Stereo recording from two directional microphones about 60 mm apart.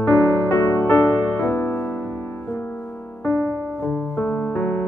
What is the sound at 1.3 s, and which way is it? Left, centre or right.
Music, left.